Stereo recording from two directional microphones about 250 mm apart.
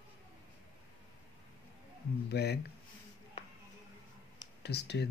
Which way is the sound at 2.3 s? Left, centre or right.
Left.